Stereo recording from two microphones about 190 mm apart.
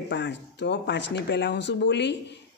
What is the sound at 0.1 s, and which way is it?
A woman's voice, 65° left (ahead or behind).